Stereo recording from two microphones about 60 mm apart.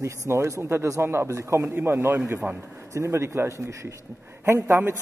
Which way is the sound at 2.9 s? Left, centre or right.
Right.